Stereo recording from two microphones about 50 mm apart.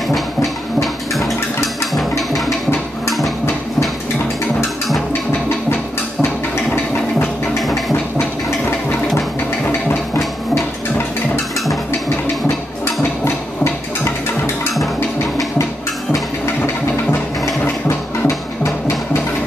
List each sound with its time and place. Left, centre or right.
1.1 s music: centre
6.5 s a sound: left
14.0 s music: left
18.2 s music: left